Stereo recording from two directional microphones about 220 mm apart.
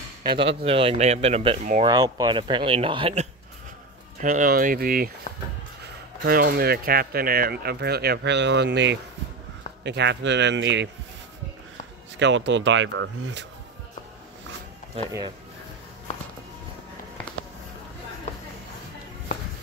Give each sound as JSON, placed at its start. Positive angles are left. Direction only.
{"t": 0.7, "sound": "speech", "side_deg": -25}
{"t": 1.6, "sound": "speech", "side_deg": -35}
{"t": 1.9, "sound": "speech", "side_deg": -15}
{"t": 4.2, "sound": "speech", "side_deg": -40}
{"t": 6.2, "sound": "speech", "side_deg": -45}
{"t": 12.2, "sound": "speech", "side_deg": -55}